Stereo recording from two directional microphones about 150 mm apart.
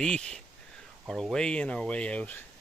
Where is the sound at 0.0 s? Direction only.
5° left (ahead or behind).